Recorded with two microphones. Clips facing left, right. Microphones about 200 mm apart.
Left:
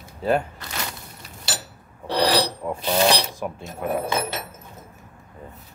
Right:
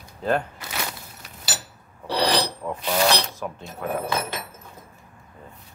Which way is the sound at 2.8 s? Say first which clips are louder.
Left 2 dB; 25° left (ahead or behind).